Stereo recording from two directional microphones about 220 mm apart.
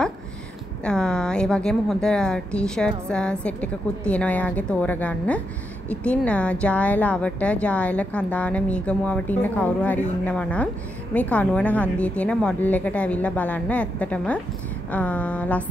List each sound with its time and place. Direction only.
0.8 s a woman's voice: 5° left (ahead or behind)